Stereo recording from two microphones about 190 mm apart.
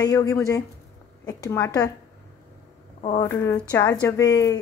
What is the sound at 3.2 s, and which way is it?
Speech, 15° left (ahead or behind).